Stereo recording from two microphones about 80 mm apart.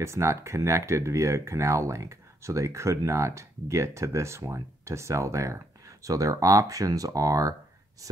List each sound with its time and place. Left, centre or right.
0.0 s speech: right